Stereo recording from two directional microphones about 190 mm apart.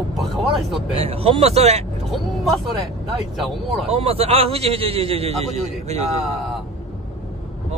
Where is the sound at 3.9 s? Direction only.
30° right (ahead or behind).